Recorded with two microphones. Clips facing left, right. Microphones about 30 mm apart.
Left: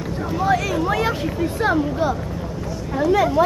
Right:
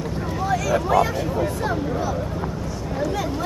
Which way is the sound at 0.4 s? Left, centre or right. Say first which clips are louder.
Left 3 dB; left.